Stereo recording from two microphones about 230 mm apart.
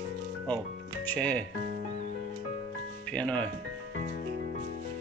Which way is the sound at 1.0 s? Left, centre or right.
Centre.